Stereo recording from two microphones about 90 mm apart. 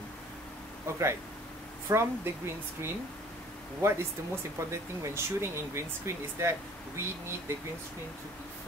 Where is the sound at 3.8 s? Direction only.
30° right (ahead or behind).